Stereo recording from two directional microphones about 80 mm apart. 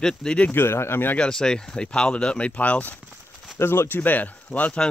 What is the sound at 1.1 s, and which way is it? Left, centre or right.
Speech, centre.